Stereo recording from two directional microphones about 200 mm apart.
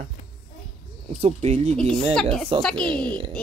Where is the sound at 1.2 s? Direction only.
35° right (ahead or behind).